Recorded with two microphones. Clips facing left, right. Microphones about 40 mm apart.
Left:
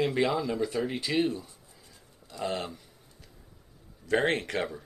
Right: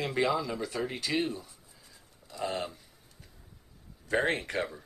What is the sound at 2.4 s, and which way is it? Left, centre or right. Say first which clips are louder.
Speech: left 1 dB; left.